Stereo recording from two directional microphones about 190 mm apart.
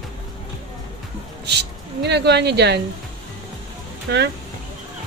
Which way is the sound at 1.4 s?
65° right (ahead or behind).